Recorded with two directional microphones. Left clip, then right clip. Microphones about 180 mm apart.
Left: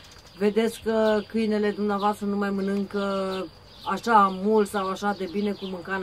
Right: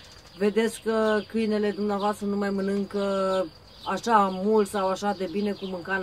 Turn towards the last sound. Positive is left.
turn(degrees=0)  # may be behind; listen again after turning